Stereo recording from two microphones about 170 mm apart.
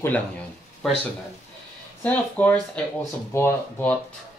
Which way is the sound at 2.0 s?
10° left (ahead or behind).